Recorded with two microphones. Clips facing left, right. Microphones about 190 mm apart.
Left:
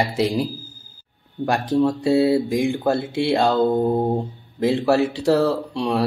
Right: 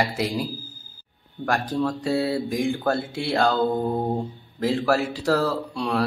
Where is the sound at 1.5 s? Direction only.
25° left (ahead or behind).